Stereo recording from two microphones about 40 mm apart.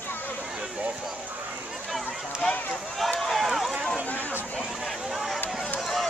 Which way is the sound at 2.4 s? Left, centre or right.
Centre.